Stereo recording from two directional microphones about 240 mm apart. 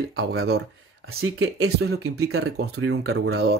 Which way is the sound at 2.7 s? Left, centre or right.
Right.